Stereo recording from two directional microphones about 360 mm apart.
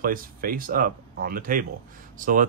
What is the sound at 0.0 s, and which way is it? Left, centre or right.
Speech, right.